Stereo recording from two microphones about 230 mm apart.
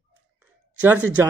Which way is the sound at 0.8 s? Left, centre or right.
Centre.